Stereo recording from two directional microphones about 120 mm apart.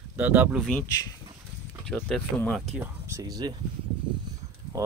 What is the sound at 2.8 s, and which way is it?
Speech, 25° right (ahead or behind).